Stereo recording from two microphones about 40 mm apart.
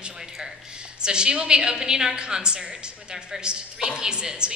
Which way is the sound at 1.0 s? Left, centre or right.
Right.